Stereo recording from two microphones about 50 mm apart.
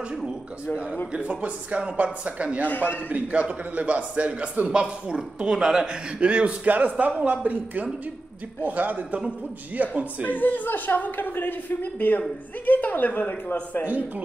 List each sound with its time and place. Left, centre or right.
1.1 s a man's voice: right
2.7 s speech: left
3.1 s a man's voice: right
10.2 s speech: left
13.8 s a man's voice: right